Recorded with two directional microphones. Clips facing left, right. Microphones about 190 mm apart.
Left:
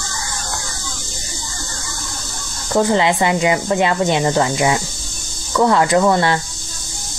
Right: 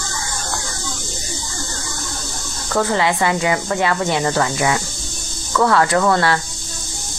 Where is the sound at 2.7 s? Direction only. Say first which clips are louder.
Left 3 dB; 20° left (ahead or behind).